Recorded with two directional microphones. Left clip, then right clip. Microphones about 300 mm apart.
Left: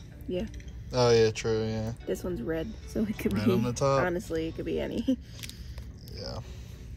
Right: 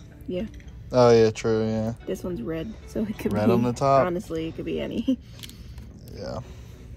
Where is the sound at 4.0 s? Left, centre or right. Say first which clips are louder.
Right 4 dB; right.